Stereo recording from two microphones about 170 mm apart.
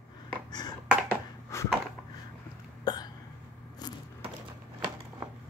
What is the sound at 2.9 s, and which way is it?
Hiccup, 25° left (ahead or behind).